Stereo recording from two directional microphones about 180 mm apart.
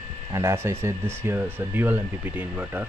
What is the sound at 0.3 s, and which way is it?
Speech, 15° right (ahead or behind).